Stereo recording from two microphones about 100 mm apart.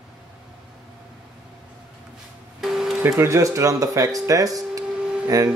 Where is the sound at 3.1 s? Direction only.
30° right (ahead or behind).